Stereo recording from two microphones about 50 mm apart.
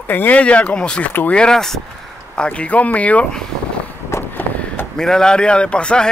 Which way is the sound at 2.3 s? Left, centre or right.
Left.